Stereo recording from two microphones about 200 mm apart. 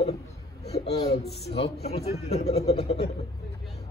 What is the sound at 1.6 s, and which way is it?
A man's voice, 30° left (ahead or behind).